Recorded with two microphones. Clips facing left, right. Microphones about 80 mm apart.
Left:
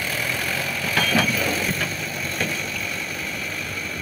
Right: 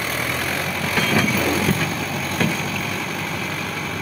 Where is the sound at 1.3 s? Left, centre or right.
Right.